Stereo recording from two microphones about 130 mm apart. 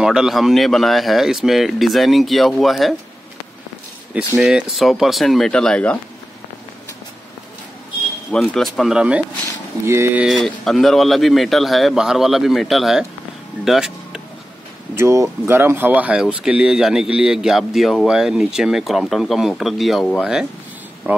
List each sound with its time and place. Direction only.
0.0 s speech: 5° right (ahead or behind)
4.4 s speech: 5° right (ahead or behind)
8.3 s speech: 5° left (ahead or behind)
9.8 s speech: 20° right (ahead or behind)
10.2 s speech: centre (ahead or behind)
13.7 s vehicle: 5° right (ahead or behind)
15.0 s speech: 20° right (ahead or behind); by 20.1 s centre (ahead or behind)